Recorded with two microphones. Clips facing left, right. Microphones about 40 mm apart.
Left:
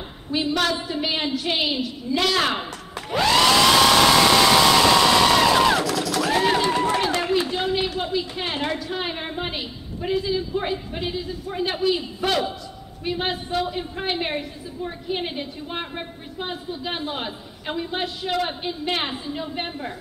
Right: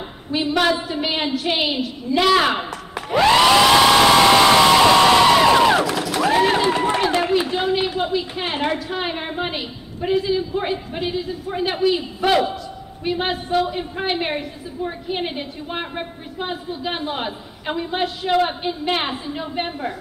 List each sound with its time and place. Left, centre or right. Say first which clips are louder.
0.3 s a woman's voice: right 4 dB; centre
5.9 s a sound: right 3 dB; right
6.6 s run: right 2 dB; right
7.2 s a woman's voice: right 3 dB; centre